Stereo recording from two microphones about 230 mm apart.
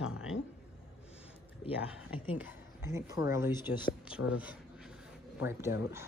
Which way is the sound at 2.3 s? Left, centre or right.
Centre.